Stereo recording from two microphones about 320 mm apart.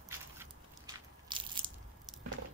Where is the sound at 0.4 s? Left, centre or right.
Centre.